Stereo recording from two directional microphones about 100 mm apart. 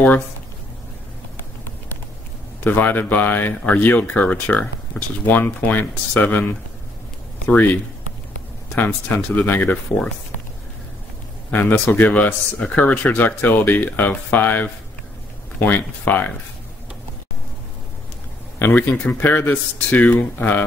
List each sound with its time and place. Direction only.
2.6 s speech: 20° left (ahead or behind)
11.5 s speech: 20° left (ahead or behind)
18.6 s speech: 20° left (ahead or behind)